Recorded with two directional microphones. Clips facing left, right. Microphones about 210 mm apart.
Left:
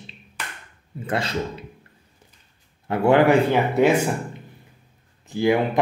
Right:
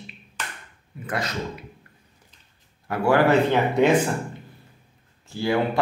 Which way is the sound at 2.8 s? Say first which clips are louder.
Left 3 dB; 25° left (ahead or behind).